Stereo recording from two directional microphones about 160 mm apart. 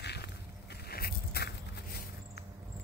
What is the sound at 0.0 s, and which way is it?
Vehicle, 90° left.